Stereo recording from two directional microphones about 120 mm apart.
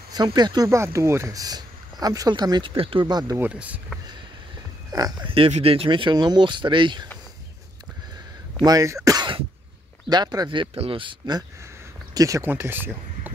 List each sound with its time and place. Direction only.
0.1 s speech: 35° right (ahead or behind)
0.7 s speech: 25° right (ahead or behind)
3.3 s speech: 10° right (ahead or behind)
4.9 s speech: 35° right (ahead or behind)
5.5 s speech: 55° right (ahead or behind)
8.6 s speech: 25° right (ahead or behind)
12.1 s speech: 30° right (ahead or behind)
12.4 s speech: 15° right (ahead or behind)